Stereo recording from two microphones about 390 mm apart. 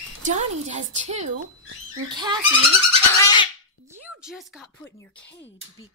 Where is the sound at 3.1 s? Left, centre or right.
Centre.